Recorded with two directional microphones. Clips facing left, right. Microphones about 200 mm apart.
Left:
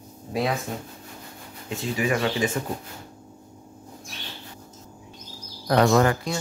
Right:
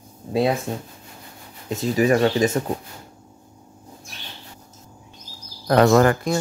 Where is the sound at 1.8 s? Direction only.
40° right (ahead or behind).